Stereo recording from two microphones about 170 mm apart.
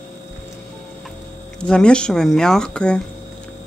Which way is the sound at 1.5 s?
5° left (ahead or behind).